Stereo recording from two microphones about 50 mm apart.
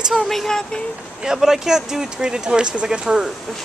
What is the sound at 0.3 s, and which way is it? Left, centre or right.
Speech, centre.